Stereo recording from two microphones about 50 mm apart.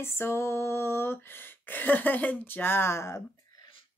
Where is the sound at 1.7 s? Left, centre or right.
Left.